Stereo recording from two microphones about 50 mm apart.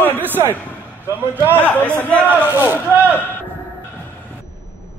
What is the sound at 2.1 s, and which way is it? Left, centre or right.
Speech, right.